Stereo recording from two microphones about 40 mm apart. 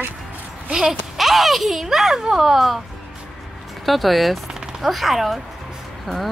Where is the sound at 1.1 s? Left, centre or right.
Centre.